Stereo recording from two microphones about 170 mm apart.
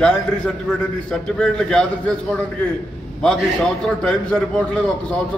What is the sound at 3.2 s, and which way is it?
A man's voice, 5° left (ahead or behind).